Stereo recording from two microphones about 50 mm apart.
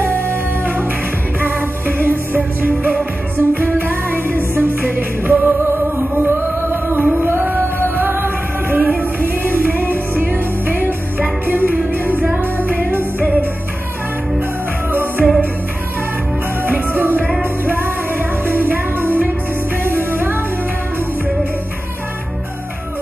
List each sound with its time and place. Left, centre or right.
1.4 s music: right
11.1 s music: right
14.9 s music: right
16.6 s music: right